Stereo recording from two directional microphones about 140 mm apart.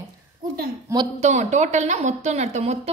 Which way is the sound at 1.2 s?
55° right (ahead or behind).